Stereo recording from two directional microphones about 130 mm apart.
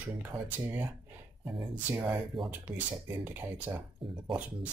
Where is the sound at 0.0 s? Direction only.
15° right (ahead or behind).